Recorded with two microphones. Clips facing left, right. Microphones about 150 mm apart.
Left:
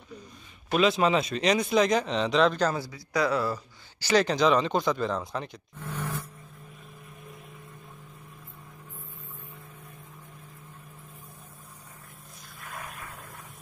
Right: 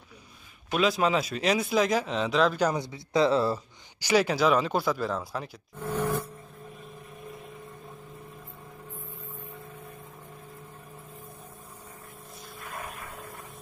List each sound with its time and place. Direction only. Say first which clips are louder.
0.7 s speech: left 2 dB; centre (ahead or behind)
2.6 s speech: right 1 dB; 20° right (ahead or behind)
4.0 s speech: even; 10° right (ahead or behind)
12.5 s vehicle: right 2 dB; centre (ahead or behind)